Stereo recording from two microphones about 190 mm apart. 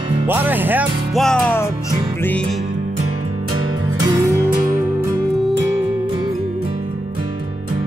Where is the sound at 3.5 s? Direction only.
20° right (ahead or behind).